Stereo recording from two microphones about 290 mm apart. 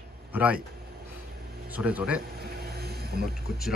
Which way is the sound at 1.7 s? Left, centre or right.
Centre.